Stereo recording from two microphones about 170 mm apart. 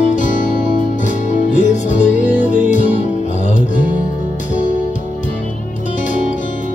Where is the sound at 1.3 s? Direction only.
45° left (ahead or behind).